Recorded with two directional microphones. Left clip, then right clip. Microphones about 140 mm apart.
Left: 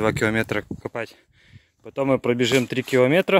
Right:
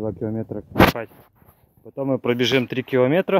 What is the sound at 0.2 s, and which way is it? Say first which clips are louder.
Speech: left 7 dB; 30° left (ahead or behind).